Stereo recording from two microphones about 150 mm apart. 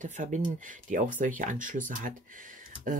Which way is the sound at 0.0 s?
55° right (ahead or behind).